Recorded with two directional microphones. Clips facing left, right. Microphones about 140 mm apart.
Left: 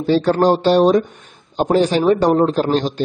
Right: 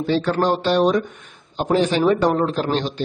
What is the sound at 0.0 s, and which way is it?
Speech, 35° left (ahead or behind).